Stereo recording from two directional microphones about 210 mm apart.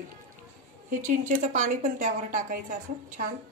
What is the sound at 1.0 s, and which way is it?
A woman's voice, 35° right (ahead or behind).